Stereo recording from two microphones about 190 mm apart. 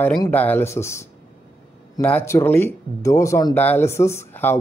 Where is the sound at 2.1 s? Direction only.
10° left (ahead or behind).